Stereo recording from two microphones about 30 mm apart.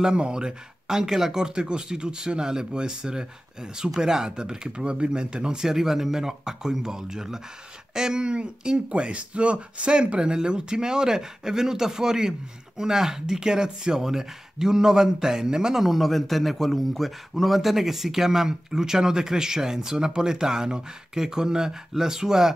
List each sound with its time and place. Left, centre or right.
0.0 s speech: right
4.6 s speech: right
5.6 s speech: centre
15.8 s speech: centre